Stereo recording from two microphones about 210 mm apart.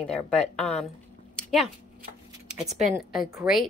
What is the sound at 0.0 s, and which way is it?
Speech, 5° left (ahead or behind).